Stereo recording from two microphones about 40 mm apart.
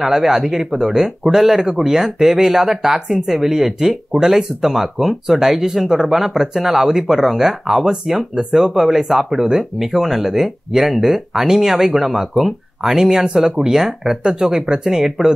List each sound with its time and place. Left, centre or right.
0.0 s speech: centre
8.5 s speech: right
8.7 s speech: centre